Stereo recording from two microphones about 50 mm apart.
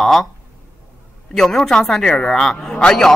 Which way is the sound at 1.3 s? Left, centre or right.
Centre.